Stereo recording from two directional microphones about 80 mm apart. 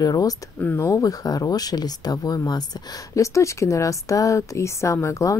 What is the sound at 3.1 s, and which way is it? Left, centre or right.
Speech, left.